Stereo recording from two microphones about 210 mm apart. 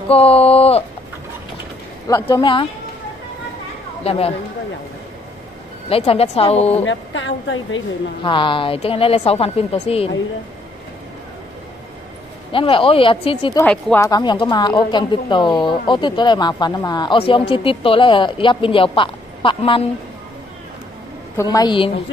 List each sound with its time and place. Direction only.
0.1 s speech: 30° left (ahead or behind)
2.0 s speech: 15° left (ahead or behind)
4.0 s speech: 30° left (ahead or behind)
5.9 s speech: 30° left (ahead or behind)
6.8 s a woman's voice: 65° left (ahead or behind)
8.2 s speech: 25° left (ahead or behind)
12.5 s speech: 25° left (ahead or behind)
13.6 s speech: 5° left (ahead or behind)
14.0 s speech: 20° left (ahead or behind)
21.4 s speech: 15° left (ahead or behind)